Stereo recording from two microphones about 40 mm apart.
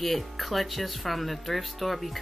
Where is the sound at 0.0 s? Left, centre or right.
Centre.